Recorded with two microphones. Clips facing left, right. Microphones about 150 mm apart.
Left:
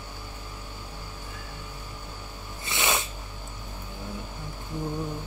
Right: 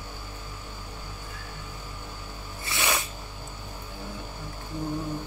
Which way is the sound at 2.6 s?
20° left (ahead or behind).